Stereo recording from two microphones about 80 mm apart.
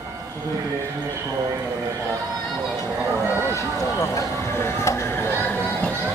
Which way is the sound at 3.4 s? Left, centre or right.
Left.